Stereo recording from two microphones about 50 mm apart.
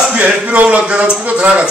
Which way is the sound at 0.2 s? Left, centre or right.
Right.